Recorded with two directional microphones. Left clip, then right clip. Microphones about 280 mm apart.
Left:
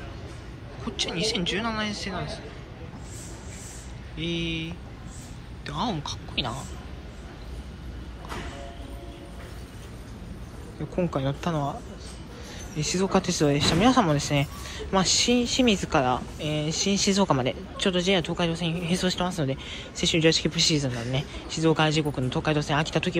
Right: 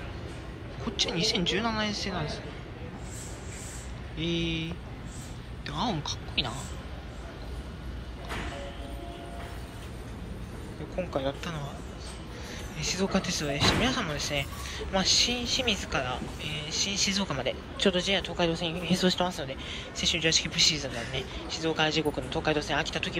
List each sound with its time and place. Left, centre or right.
0.8 s speech: centre
4.2 s speech: centre
11.5 s speech: centre
12.7 s speech: centre
17.7 s speech: centre